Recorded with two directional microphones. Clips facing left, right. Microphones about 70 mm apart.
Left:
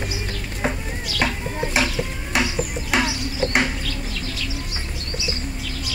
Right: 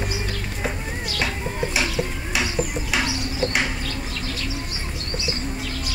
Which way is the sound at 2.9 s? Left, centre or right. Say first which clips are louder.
Left 4 dB; left.